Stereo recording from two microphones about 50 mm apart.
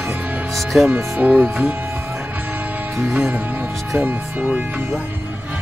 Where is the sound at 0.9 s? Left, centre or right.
Right.